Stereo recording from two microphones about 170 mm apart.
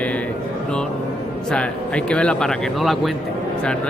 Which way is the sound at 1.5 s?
5° left (ahead or behind).